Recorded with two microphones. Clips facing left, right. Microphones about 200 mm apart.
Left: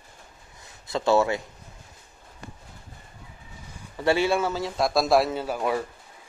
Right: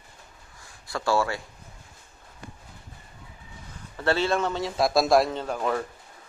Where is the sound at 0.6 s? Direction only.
20° left (ahead or behind).